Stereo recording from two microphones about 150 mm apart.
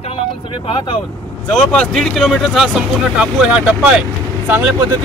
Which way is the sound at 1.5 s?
5° left (ahead or behind).